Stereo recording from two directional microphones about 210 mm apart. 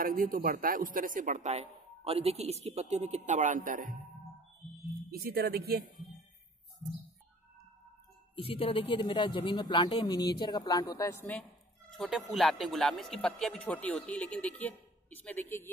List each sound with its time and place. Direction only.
0.0 s speech: 40° right (ahead or behind)
5.1 s speech: 50° right (ahead or behind)
8.4 s a woman's voice: 25° left (ahead or behind); by 15.7 s 10° left (ahead or behind)